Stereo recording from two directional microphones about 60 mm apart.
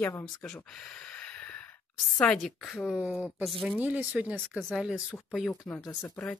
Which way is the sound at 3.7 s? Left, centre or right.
Right.